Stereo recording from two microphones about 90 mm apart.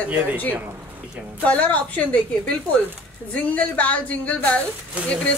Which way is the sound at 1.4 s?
15° left (ahead or behind).